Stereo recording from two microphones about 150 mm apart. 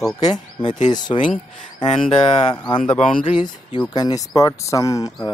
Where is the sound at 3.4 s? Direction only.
30° left (ahead or behind).